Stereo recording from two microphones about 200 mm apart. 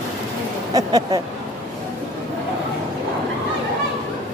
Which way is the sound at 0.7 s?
20° right (ahead or behind).